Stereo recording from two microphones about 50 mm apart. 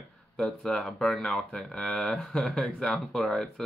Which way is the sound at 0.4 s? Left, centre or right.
Centre.